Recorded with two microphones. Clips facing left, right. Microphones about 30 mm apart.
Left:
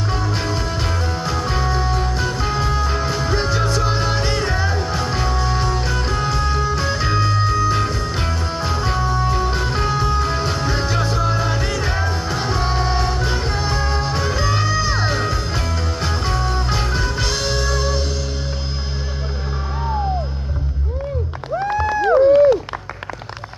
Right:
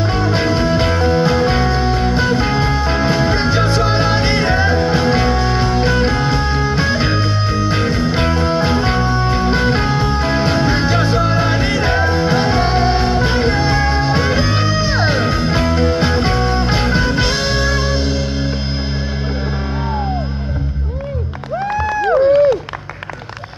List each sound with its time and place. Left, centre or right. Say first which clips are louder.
0.1 s music: right 6 dB; right